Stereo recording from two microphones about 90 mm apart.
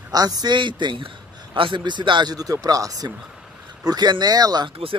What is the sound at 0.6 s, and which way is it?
A man's voice, 60° right (ahead or behind).